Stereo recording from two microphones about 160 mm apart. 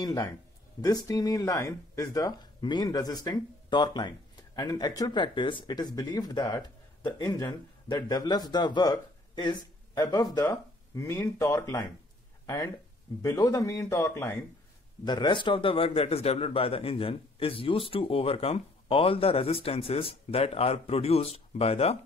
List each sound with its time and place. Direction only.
0.0 s speech: 25° left (ahead or behind)
7.2 s speech: 10° left (ahead or behind)
7.9 s speech: 25° left (ahead or behind)